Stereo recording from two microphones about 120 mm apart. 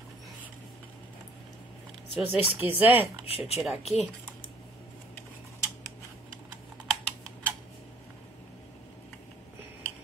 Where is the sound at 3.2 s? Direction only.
60° left (ahead or behind).